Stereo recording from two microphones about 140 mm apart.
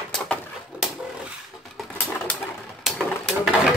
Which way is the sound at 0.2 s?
Centre (ahead or behind).